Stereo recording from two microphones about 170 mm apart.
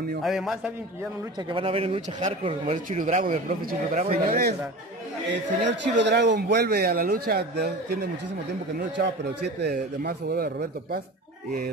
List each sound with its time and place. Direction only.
0.2 s a man's voice: centre (ahead or behind)
1.5 s a man's voice: 35° right (ahead or behind)
4.1 s speech: 65° right (ahead or behind)
5.3 s speech: 90° right; by 8.1 s 70° right (ahead or behind)
9.6 s speech: 70° right (ahead or behind)